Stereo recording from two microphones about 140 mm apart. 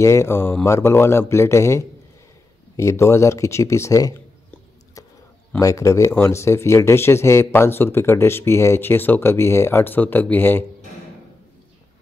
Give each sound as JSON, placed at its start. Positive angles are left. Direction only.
{"t": 0.0, "sound": "speech", "side_deg": 20}
{"t": 5.6, "sound": "speech", "side_deg": 25}